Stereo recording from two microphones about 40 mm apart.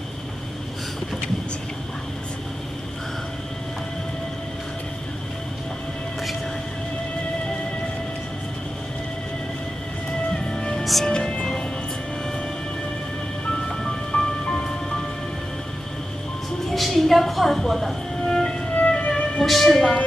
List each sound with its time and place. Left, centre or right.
10.5 s music: centre
10.8 s music: centre
11.1 s music: left
13.5 s music: centre
16.7 s a sound: centre
18.3 s music: left
19.4 s music: centre